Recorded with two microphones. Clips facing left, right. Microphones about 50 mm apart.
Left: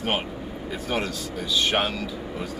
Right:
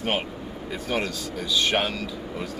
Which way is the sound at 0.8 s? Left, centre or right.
Centre.